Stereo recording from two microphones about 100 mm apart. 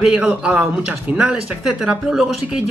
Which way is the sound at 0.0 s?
5° right (ahead or behind).